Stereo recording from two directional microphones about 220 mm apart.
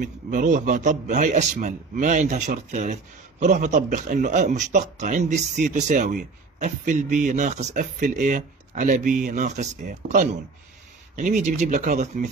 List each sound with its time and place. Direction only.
0.0 s a man's voice: 35° right (ahead or behind)